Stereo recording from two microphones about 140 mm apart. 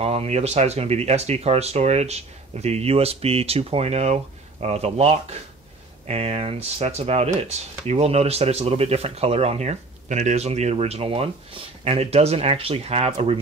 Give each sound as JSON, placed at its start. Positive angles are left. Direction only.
{"t": 0.0, "sound": "speech", "side_deg": -45}